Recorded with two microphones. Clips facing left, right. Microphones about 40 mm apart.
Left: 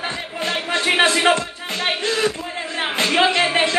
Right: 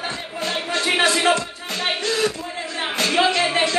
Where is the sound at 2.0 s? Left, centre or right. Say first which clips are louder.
Left 1 dB; left.